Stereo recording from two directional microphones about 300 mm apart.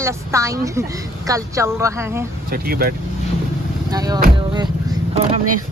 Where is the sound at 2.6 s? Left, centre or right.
Right.